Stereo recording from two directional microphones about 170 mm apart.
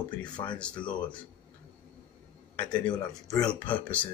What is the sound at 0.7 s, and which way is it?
Speech, 25° left (ahead or behind).